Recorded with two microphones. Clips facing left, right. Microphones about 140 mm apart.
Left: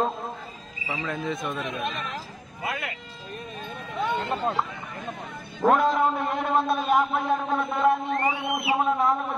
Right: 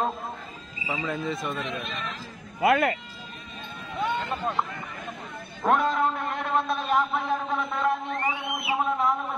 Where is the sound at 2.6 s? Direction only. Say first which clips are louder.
Right 11 dB; 60° right (ahead or behind).